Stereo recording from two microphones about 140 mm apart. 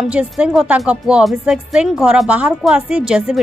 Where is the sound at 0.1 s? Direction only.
5° right (ahead or behind).